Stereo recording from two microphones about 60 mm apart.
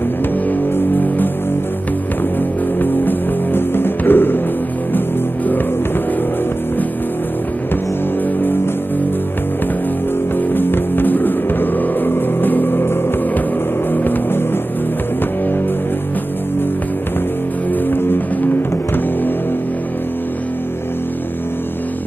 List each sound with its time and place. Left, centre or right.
0.5 s music: left
2.8 s music: left
10.5 s music: left
13.9 s vehicle: left